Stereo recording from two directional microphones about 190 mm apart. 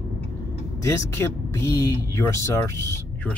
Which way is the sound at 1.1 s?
15° left (ahead or behind).